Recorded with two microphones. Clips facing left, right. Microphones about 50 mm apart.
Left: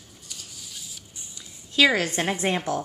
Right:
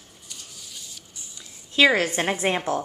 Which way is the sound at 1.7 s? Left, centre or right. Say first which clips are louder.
Right 2 dB; centre.